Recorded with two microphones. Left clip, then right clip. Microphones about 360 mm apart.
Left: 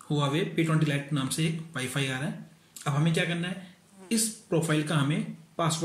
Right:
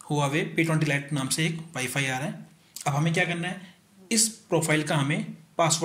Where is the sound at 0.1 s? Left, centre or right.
Centre.